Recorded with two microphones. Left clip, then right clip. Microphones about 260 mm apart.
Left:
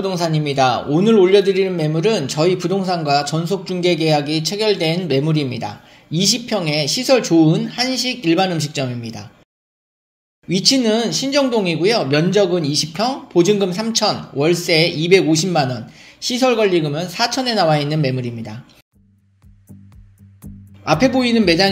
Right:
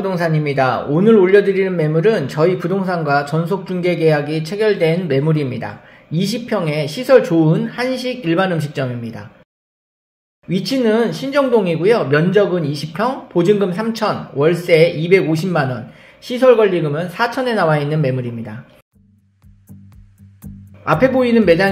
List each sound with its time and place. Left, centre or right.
0.0 s a man's voice: centre
10.5 s a man's voice: left
20.8 s a man's voice: left